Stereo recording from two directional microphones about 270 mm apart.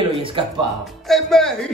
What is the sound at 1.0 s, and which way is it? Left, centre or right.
Speech, centre.